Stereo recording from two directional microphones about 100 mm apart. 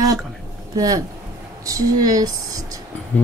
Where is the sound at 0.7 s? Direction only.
40° right (ahead or behind).